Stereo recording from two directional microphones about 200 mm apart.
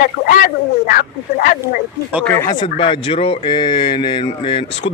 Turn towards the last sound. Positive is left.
turn(degrees=25)  # may be behind; listen again after turning